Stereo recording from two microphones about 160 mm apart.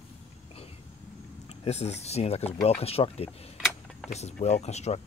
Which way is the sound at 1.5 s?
45° left (ahead or behind).